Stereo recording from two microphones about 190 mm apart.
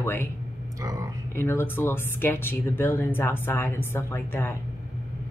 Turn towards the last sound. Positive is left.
turn(degrees=10)  # may be behind; listen again after turning